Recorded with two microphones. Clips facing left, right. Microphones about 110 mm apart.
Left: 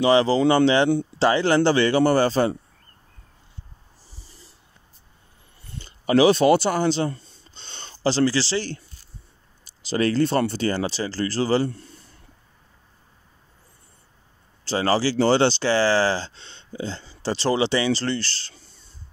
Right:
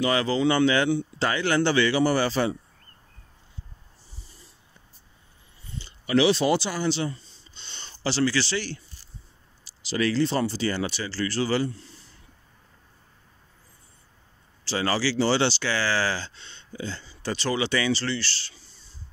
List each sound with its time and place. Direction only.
0.0 s speech: 25° left (ahead or behind)
0.4 s speech: 40° left (ahead or behind)
5.6 s a sound: 55° left (ahead or behind); by 8.6 s 35° left (ahead or behind)
9.8 s speech: 40° left (ahead or behind)
10.2 s speech: 55° left (ahead or behind)
10.7 s speech: 35° left (ahead or behind); by 12.0 s 50° left (ahead or behind)
14.6 s speech: 40° left (ahead or behind)
17.9 s speech: 40° left (ahead or behind)